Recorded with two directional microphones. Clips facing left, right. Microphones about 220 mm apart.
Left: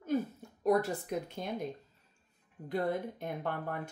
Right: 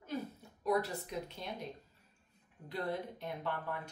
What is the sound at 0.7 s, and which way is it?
Speech, 50° left (ahead or behind).